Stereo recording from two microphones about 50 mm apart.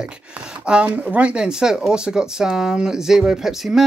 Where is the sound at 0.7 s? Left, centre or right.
Right; by 3.8 s centre.